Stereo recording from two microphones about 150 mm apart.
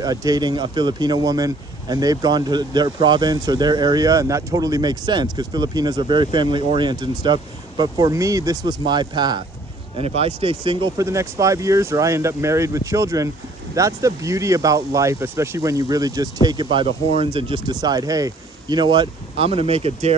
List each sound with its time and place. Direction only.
0.0 s speech: 25° right (ahead or behind)
9.9 s speech: 40° right (ahead or behind)
11.0 s speech: 20° right (ahead or behind); by 20.2 s 45° right (ahead or behind)